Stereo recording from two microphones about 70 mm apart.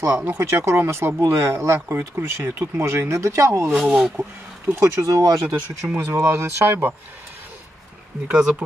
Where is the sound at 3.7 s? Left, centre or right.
Centre.